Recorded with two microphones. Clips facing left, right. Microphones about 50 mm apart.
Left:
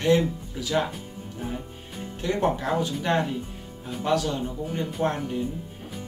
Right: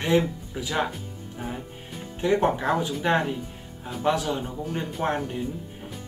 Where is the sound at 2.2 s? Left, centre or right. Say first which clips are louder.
Right 3 dB; centre.